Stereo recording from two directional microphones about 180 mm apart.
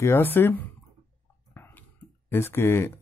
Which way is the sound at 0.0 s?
10° left (ahead or behind).